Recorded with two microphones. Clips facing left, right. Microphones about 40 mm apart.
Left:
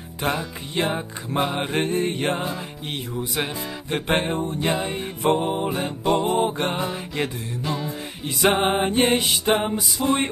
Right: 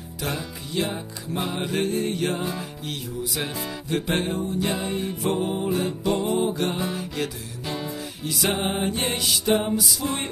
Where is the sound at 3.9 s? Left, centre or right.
Left.